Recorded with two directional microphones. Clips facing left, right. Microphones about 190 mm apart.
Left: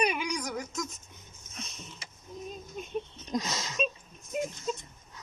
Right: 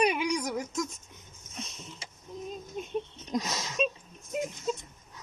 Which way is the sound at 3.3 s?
5° right (ahead or behind).